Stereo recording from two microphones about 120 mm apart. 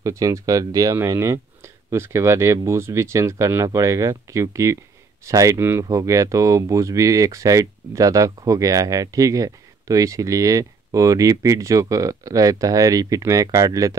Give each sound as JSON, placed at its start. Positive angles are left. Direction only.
{"t": 0.0, "sound": "speech", "side_deg": -25}